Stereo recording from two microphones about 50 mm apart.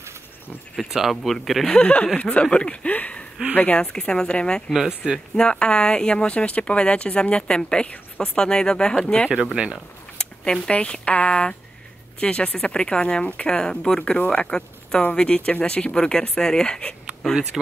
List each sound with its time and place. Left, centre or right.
0.8 s speech: centre
1.2 s speech: centre
1.7 s speech: left
4.7 s speech: centre
5.3 s speech: centre
9.6 s speech: right
10.1 s speech: centre